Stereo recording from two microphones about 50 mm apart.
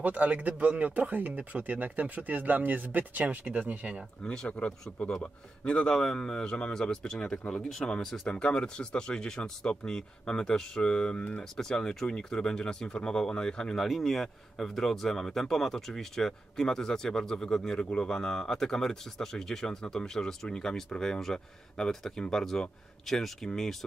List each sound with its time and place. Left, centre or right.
0.0 s speech: right
4.2 s speech: centre
13.7 s speech: centre